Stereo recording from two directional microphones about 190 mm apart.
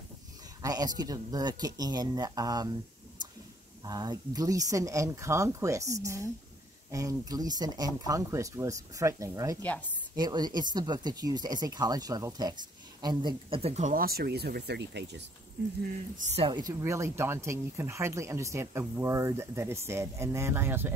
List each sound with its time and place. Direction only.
0.6 s speech: 20° right (ahead or behind)
3.8 s speech: 20° right (ahead or behind)
9.6 s a woman's voice: 10° left (ahead or behind)
10.1 s speech: 20° right (ahead or behind); by 15.2 s 65° right (ahead or behind)
16.4 s speech: 20° right (ahead or behind)